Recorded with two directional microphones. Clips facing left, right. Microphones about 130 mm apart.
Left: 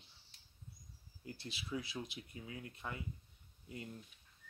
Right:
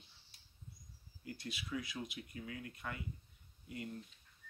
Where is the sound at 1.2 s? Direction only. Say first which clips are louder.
Right 2 dB; 30° left (ahead or behind).